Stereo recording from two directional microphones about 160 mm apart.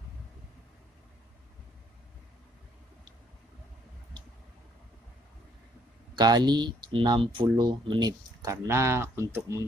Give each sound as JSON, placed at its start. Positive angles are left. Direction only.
{"t": 6.1, "sound": "speech", "side_deg": -25}
{"t": 8.5, "sound": "speech", "side_deg": -20}